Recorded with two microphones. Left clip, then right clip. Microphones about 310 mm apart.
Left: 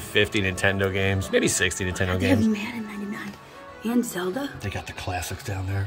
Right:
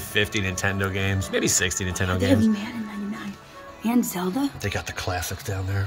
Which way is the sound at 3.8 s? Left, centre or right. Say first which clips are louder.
Right 1 dB; right.